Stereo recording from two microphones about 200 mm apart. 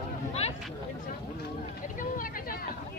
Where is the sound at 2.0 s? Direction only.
45° left (ahead or behind).